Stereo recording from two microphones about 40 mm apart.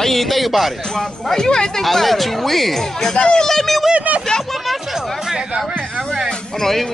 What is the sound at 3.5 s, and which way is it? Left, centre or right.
Speech, centre.